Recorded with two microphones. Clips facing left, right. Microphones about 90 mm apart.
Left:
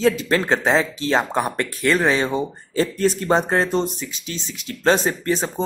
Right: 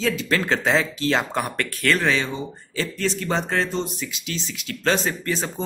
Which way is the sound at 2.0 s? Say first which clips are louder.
Left 4 dB; 35° left (ahead or behind).